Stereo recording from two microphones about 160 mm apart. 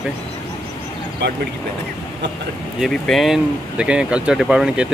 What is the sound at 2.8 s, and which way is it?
Speech, centre (ahead or behind).